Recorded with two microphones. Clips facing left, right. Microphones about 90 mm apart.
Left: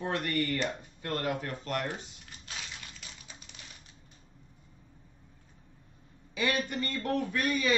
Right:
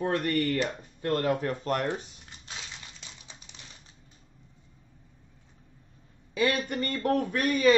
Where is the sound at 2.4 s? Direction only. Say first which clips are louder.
Even; 25° right (ahead or behind).